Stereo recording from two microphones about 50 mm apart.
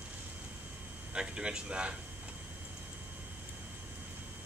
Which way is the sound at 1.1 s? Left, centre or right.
Centre.